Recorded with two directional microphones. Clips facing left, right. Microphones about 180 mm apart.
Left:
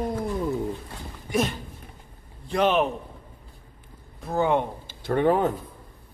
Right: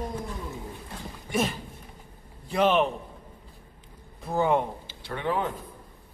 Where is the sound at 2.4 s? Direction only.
Centre (ahead or behind).